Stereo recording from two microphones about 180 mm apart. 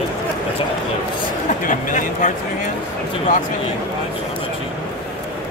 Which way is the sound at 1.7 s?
45° left (ahead or behind).